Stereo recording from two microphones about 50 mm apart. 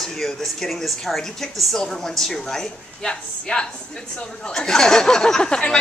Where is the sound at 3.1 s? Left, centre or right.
Centre.